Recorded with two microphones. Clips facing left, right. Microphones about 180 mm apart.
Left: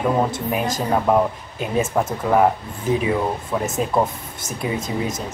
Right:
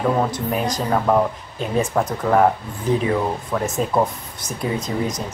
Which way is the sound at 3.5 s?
10° left (ahead or behind).